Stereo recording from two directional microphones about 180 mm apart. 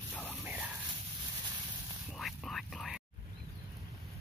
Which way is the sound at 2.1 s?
Centre (ahead or behind).